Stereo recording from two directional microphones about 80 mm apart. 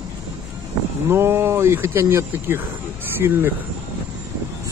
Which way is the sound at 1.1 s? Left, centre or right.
Right.